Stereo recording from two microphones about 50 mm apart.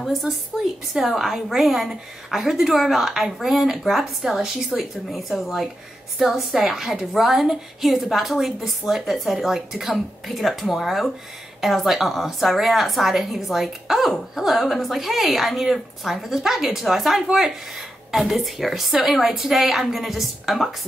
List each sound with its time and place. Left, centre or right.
0.9 s a woman's voice: centre